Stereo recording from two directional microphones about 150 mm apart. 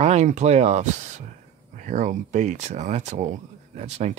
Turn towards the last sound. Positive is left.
turn(degrees=-45)  # may be behind; listen again after turning